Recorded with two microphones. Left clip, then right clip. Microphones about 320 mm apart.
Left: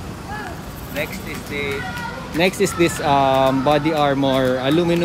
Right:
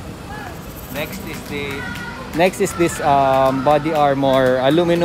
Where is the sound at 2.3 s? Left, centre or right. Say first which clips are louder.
Right 2 dB; centre.